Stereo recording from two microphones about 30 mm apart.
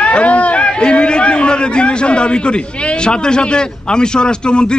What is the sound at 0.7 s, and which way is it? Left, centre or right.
A man's voice, left.